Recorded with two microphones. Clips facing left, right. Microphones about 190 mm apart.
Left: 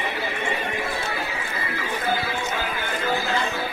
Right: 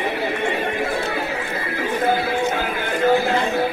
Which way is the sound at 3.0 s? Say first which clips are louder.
Right 8 dB; 50° right (ahead or behind).